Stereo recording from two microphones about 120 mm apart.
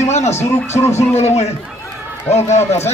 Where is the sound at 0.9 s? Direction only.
65° left (ahead or behind).